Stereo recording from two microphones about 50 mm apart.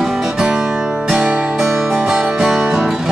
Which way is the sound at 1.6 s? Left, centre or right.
Centre.